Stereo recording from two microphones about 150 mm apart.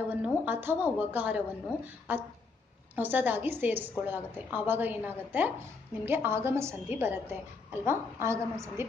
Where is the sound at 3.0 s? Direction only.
10° right (ahead or behind).